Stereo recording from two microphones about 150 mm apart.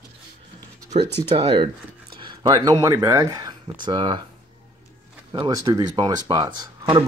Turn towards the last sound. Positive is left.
turn(degrees=-30)  # may be behind; listen again after turning